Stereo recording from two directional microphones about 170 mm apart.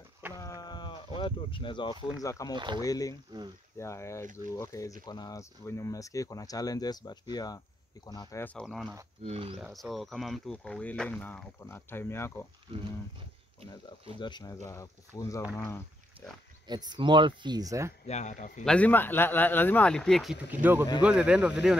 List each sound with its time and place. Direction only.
0.4 s a sound: 20° left (ahead or behind)
2.2 s speech: 20° left (ahead or behind)
2.5 s speech: 25° right (ahead or behind)
2.8 s speech: 20° left (ahead or behind)
8.6 s speech: centre (ahead or behind)
9.2 s speech: 35° right (ahead or behind)
9.6 s speech: centre (ahead or behind)
14.2 s speech: 25° left (ahead or behind)
16.6 s speech: 25° right (ahead or behind)
18.0 s a man's voice: 45° left (ahead or behind)
18.7 s speech: 10° left (ahead or behind)
20.6 s speech: 10° right (ahead or behind)